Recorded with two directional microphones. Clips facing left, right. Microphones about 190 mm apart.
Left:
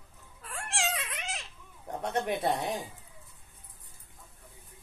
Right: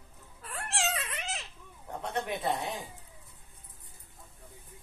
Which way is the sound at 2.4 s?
40° left (ahead or behind).